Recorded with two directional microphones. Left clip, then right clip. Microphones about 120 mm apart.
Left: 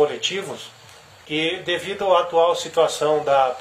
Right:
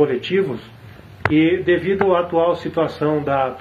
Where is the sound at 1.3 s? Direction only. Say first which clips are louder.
Right 6 dB; 20° left (ahead or behind).